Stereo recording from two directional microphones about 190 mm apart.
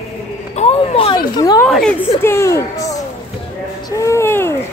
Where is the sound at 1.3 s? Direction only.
20° left (ahead or behind).